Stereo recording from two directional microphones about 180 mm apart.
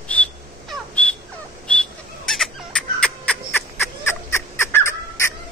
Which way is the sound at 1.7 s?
5° left (ahead or behind).